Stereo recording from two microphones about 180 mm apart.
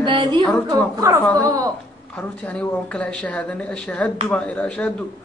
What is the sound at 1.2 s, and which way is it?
Speech, 5° left (ahead or behind).